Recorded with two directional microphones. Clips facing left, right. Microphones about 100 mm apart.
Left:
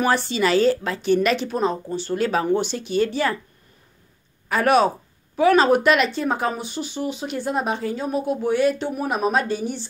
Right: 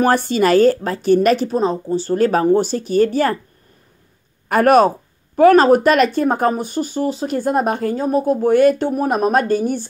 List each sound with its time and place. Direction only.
0.0 s speech: 50° right (ahead or behind)
4.5 s speech: 50° right (ahead or behind)